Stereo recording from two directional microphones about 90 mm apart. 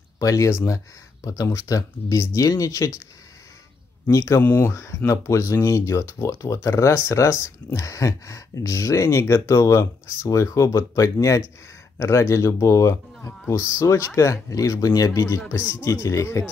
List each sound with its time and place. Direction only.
0.2 s speech: 40° left (ahead or behind)
4.1 s speech: 35° left (ahead or behind)